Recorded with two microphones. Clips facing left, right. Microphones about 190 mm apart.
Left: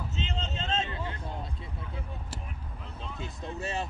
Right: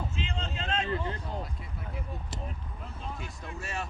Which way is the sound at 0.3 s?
25° left (ahead or behind).